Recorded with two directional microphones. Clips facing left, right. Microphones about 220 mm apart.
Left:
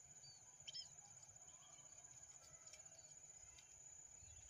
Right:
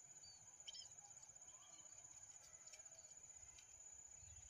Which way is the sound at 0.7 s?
55° right (ahead or behind).